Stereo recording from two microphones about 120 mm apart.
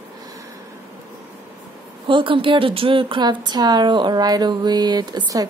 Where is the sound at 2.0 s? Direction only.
45° right (ahead or behind).